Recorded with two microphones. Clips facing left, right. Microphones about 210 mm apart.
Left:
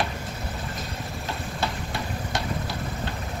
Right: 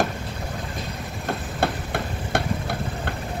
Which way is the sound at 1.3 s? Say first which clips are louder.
Right 6 dB; 55° right (ahead or behind).